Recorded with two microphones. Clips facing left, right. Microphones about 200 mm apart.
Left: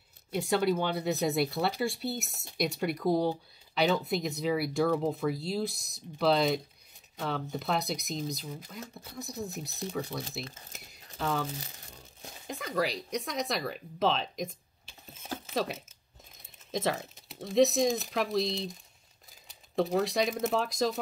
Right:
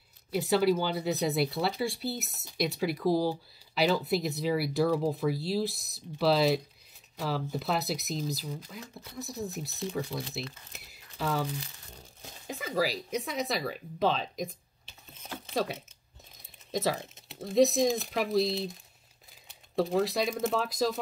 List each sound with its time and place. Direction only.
0.3 s speech: 5° right (ahead or behind)
10.5 s speech: 35° left (ahead or behind)
11.1 s speech: 5° right (ahead or behind)